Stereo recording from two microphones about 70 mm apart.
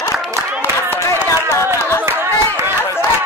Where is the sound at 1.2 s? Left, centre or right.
Left.